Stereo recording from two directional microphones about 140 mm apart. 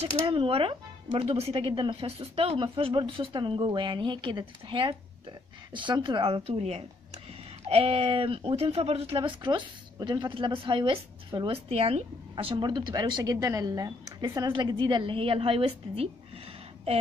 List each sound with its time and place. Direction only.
0.0 s speech: 40° right (ahead or behind)